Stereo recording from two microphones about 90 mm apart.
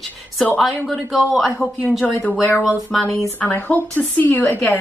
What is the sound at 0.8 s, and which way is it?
Speech, centre (ahead or behind).